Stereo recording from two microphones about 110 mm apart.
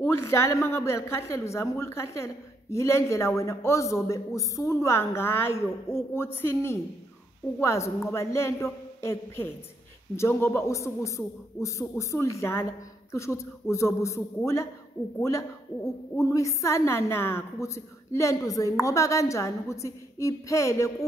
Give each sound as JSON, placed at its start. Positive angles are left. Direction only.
{"t": 0.0, "sound": "a woman's voice", "side_deg": 25}